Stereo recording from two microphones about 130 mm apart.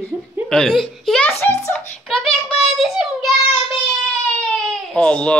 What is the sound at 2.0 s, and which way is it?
Child singing, 5° left (ahead or behind).